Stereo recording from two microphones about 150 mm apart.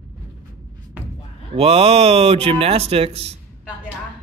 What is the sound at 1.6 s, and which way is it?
Speech, 40° right (ahead or behind).